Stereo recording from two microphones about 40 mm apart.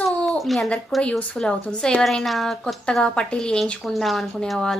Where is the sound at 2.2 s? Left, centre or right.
Centre.